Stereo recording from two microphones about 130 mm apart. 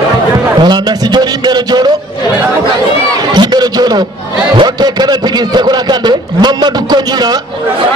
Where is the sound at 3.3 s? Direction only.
30° right (ahead or behind).